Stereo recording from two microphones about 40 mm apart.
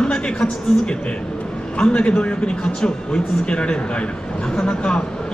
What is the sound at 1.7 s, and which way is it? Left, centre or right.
Speech, left.